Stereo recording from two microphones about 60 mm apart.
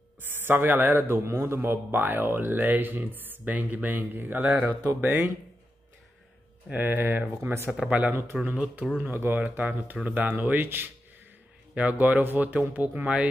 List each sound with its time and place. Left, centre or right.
0.2 s a man's voice: right
6.7 s a man's voice: right
8.1 s speech: right
8.4 s a man's voice: right